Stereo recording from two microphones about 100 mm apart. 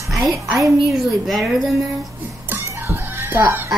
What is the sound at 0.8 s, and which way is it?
Child singing, centre (ahead or behind).